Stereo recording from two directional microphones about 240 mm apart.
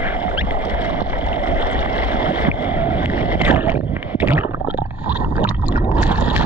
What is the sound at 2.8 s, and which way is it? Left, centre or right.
Boat, centre.